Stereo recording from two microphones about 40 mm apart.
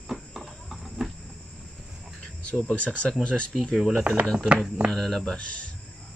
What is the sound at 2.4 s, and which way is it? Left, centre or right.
Speech, left.